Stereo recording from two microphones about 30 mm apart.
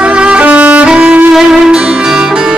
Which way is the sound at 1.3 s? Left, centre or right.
Centre.